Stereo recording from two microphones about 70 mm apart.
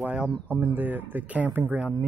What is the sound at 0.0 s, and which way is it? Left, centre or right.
A man's voice, centre.